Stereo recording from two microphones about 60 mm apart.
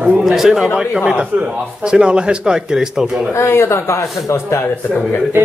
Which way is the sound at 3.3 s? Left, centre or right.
Left.